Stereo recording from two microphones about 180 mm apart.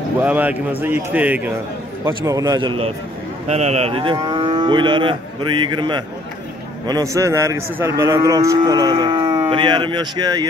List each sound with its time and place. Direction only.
0.2 s speech: 10° right (ahead or behind)
2.0 s cattle: 20° right (ahead or behind)
3.4 s cattle: 40° right (ahead or behind)
6.9 s speech: 20° right (ahead or behind)
8.0 s cattle: 15° right (ahead or behind)